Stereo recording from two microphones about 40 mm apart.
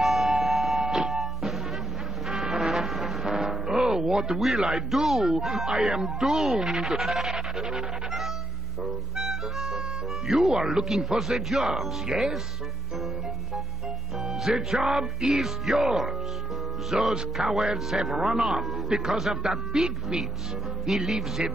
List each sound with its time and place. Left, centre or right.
0.0 s music: centre
3.3 s music: centre
4.6 s speech: centre
9.1 s music: centre
10.5 s speech: centre
10.8 s speech: centre
14.2 s speech: centre
16.9 s speech: centre